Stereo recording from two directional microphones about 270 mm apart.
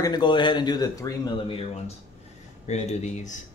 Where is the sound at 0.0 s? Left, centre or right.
Centre.